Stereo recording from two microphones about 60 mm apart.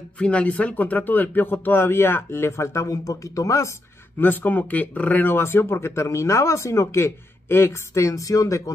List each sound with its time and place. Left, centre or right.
0.2 s speech: left
2.5 s speech: left
4.2 s speech: left
5.3 s speech: left
7.9 s speech: left